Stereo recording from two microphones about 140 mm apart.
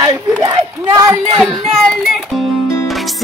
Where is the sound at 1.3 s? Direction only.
Centre (ahead or behind).